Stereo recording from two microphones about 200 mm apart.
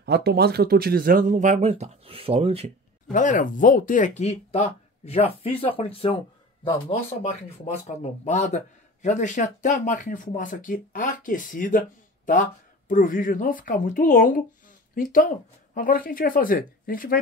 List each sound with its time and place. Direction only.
0.0 s speech: 55° right (ahead or behind); by 2.7 s 30° right (ahead or behind)
3.1 s a man's voice: 40° left (ahead or behind)